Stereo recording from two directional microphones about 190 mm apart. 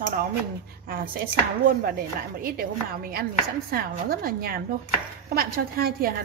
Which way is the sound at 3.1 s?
55° right (ahead or behind).